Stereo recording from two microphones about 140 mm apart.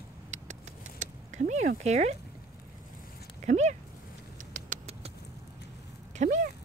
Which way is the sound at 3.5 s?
55° right (ahead or behind).